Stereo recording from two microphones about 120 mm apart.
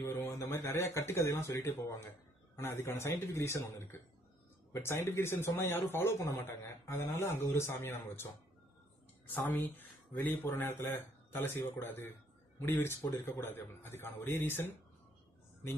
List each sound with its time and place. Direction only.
0.0 s a man's voice: 25° left (ahead or behind)
9.3 s a man's voice: 15° left (ahead or behind)